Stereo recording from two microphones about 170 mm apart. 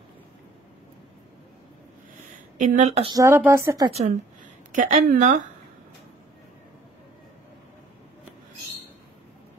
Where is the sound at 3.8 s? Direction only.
40° right (ahead or behind).